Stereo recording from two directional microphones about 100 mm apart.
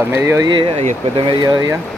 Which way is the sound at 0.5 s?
55° right (ahead or behind).